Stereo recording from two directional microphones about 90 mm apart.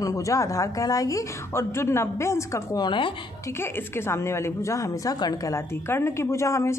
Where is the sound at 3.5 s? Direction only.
25° left (ahead or behind).